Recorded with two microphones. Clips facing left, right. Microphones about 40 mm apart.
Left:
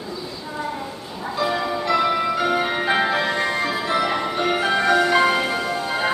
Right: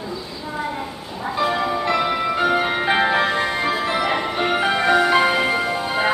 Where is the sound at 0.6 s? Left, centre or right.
Centre.